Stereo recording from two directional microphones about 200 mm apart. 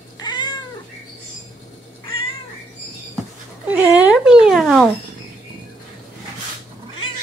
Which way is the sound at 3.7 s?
5° right (ahead or behind).